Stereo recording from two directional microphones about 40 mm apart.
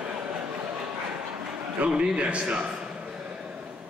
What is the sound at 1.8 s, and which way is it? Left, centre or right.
Speech, right.